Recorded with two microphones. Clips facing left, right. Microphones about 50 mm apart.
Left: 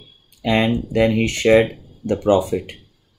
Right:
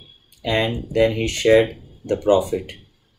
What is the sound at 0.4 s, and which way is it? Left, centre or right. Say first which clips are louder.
Speech: left 3 dB; left.